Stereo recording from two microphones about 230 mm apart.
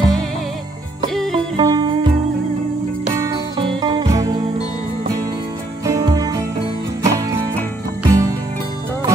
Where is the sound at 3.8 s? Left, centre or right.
Centre.